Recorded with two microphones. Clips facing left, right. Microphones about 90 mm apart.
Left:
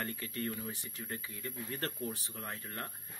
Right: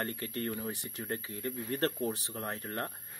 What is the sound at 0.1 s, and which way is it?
Speech, 50° right (ahead or behind).